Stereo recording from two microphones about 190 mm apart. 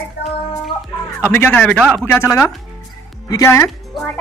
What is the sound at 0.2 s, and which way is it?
Music, 60° left (ahead or behind).